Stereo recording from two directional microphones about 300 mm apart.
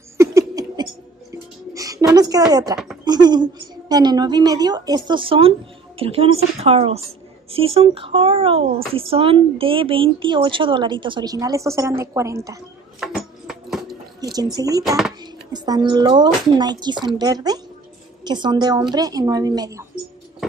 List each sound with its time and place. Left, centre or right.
0.2 s laughter: centre
1.3 s music: centre
3.1 s a woman's voice: centre
13.0 s music: centre
14.2 s a woman's voice: centre